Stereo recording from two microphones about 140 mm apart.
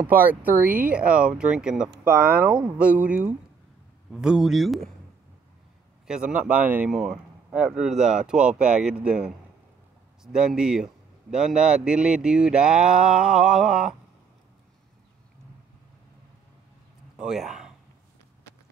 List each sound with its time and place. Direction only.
0.0 s speech: 15° right (ahead or behind)
2.0 s a man's voice: 15° right (ahead or behind); by 4.8 s centre (ahead or behind)
6.0 s a man's voice: 5° right (ahead or behind)
17.2 s speech: centre (ahead or behind)